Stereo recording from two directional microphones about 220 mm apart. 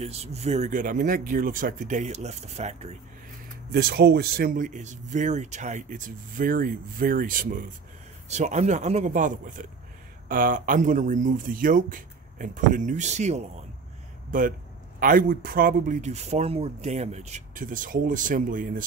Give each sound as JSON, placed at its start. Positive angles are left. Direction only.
{"t": 0.0, "sound": "speech", "side_deg": -30}
{"t": 3.7, "sound": "speech", "side_deg": -45}